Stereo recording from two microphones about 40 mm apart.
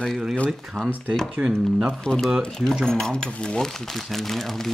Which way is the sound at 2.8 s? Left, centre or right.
Centre.